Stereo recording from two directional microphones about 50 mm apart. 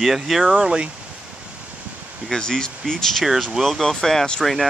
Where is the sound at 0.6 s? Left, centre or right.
Centre.